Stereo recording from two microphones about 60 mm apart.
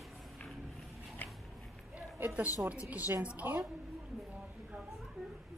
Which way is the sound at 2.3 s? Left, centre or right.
Right.